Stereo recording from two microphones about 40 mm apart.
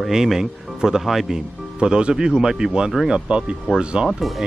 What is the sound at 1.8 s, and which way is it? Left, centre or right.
A man's voice, right.